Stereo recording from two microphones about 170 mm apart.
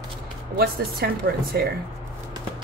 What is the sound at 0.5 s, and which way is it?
Speech, 65° right (ahead or behind).